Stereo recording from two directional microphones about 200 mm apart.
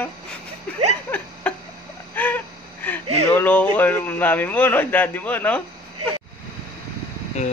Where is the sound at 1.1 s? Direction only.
10° left (ahead or behind).